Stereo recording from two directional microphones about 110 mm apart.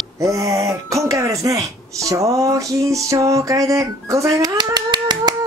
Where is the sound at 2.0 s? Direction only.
30° right (ahead or behind).